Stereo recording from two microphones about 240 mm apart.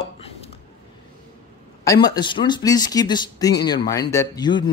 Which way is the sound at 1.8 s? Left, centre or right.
Centre.